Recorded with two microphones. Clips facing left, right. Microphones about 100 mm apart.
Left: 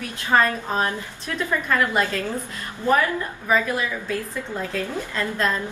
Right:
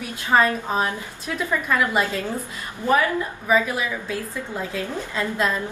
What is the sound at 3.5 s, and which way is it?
A woman's voice, 15° right (ahead or behind).